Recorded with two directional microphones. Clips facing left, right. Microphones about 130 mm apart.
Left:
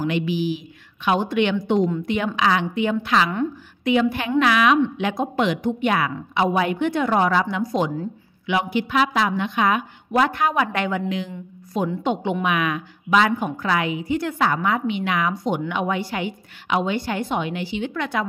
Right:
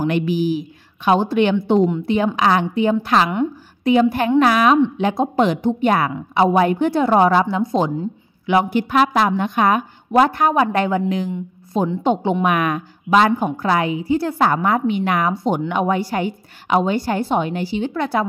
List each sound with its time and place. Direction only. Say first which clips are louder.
0.0 s a woman's voice: right 4 dB; 45° right (ahead or behind)
8.5 s a woman's voice: right 5 dB; 45° right (ahead or behind)
11.7 s a woman's voice: right 4 dB; 30° right (ahead or behind)
12.4 s a woman's voice: right 4 dB; 45° right (ahead or behind)
15.3 s a woman's voice: right 4 dB; 30° right (ahead or behind)